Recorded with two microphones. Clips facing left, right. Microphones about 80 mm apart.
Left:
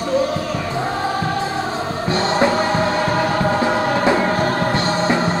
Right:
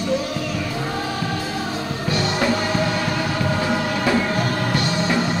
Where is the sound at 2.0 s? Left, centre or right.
Left.